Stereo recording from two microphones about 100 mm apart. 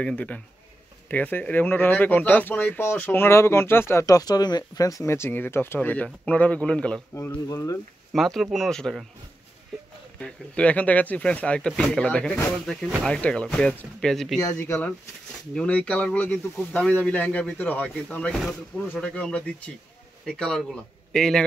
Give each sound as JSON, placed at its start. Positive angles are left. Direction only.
{"t": 0.0, "sound": "speech", "side_deg": 15}
{"t": 7.4, "sound": "speech", "side_deg": 35}
{"t": 8.1, "sound": "speech", "side_deg": 0}
{"t": 10.1, "sound": "speech", "side_deg": 10}
{"t": 14.4, "sound": "speech", "side_deg": 25}
{"t": 15.5, "sound": "speech", "side_deg": 15}